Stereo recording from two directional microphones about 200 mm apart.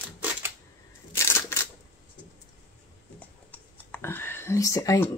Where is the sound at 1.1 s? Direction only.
15° left (ahead or behind).